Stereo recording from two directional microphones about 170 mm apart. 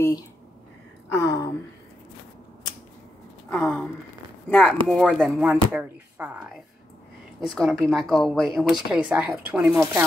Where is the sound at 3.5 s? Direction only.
5° left (ahead or behind).